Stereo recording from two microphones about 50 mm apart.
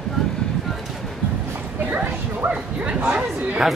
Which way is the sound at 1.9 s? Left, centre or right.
Right.